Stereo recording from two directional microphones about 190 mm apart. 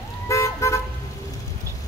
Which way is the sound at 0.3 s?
15° left (ahead or behind).